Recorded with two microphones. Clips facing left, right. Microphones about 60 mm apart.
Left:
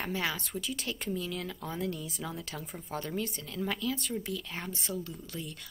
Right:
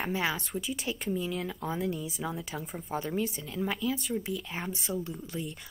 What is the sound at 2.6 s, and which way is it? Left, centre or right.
A woman's voice, centre.